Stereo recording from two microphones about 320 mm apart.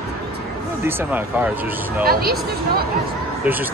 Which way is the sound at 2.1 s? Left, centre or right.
Right.